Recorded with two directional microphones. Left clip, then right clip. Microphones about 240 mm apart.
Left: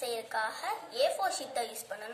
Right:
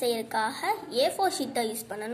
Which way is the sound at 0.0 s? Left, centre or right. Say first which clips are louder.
Right 6 dB; right.